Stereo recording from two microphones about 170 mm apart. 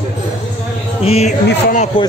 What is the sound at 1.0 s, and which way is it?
Music, 35° left (ahead or behind).